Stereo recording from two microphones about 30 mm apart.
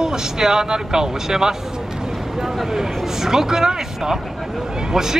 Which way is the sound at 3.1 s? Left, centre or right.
Centre.